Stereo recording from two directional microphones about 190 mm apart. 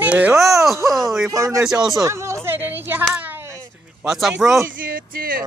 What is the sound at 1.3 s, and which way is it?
Speech, 15° right (ahead or behind).